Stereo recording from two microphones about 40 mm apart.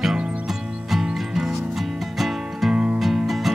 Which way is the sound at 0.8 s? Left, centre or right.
Centre.